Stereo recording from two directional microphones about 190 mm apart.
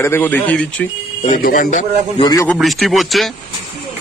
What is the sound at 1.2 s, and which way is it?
A man's voice, 45° left (ahead or behind).